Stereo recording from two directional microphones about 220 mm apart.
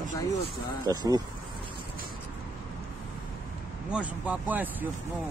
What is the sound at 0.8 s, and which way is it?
Speech, 20° right (ahead or behind).